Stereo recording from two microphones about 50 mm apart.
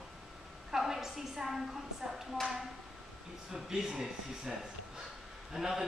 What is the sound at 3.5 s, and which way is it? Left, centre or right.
Speech, centre.